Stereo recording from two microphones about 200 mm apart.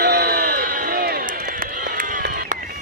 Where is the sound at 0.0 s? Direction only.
55° right (ahead or behind).